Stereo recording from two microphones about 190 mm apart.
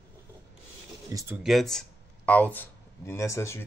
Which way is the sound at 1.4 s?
Centre (ahead or behind).